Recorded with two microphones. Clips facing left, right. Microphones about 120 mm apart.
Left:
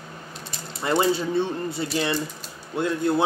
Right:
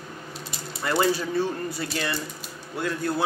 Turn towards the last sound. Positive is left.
turn(degrees=20)  # may be behind; listen again after turning